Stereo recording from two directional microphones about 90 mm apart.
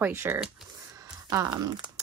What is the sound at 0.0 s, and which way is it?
Speech, 25° right (ahead or behind).